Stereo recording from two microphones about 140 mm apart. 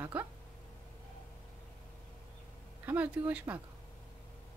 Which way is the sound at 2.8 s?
15° right (ahead or behind).